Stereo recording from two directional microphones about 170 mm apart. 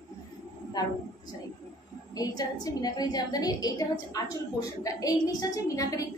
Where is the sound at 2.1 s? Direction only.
20° left (ahead or behind).